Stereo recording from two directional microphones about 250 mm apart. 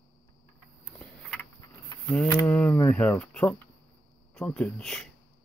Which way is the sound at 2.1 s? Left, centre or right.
Centre.